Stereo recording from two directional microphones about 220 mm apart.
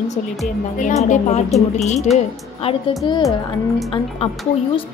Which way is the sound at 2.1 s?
25° left (ahead or behind).